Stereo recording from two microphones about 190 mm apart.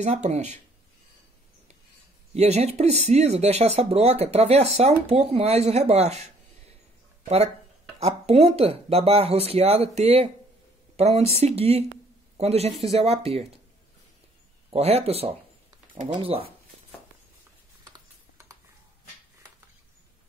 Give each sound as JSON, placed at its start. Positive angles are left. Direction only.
{"t": 0.0, "sound": "speech", "side_deg": -35}
{"t": 2.3, "sound": "speech", "side_deg": -35}
{"t": 8.0, "sound": "speech", "side_deg": -35}
{"t": 14.7, "sound": "speech", "side_deg": -35}
{"t": 17.8, "sound": "typing", "side_deg": -20}